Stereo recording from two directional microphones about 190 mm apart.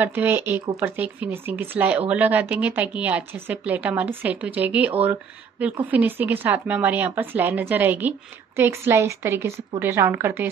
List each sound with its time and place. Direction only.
0.0 s a woman's voice: 10° right (ahead or behind)